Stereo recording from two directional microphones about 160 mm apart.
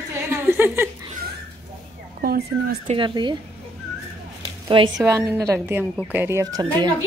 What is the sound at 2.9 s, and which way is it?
Speech, 30° right (ahead or behind).